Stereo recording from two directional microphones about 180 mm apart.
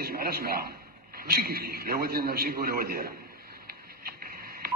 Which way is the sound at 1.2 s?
55° right (ahead or behind).